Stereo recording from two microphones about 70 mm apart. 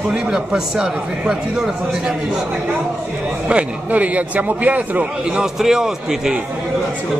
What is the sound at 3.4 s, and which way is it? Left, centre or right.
Speech, centre.